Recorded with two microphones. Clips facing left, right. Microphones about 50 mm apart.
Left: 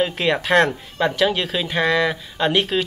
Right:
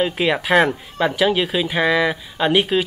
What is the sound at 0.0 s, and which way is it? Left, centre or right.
Speech, centre.